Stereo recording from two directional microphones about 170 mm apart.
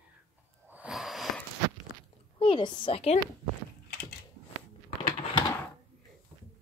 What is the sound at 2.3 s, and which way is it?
Speech, 30° left (ahead or behind).